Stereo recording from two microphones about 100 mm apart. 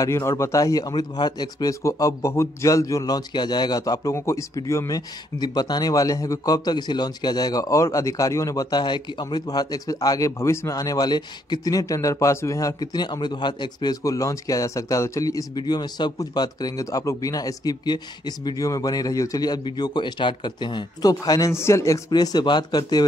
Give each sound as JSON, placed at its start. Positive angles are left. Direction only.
{"t": 0.0, "sound": "a man's voice", "side_deg": 30}
{"t": 21.5, "sound": "a man's voice", "side_deg": 25}
{"t": 22.1, "sound": "speech", "side_deg": 45}